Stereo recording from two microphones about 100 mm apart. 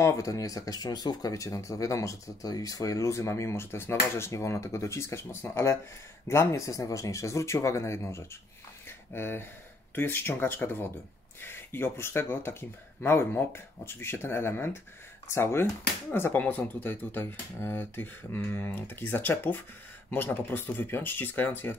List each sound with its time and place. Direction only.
0.0 s speech: 35° left (ahead or behind)
8.8 s a sound: 25° left (ahead or behind)
9.9 s speech: 20° left (ahead or behind)